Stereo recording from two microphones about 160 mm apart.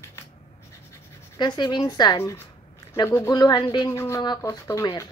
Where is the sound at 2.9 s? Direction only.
15° left (ahead or behind).